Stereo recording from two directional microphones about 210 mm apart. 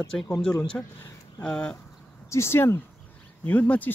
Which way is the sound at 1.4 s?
5° left (ahead or behind).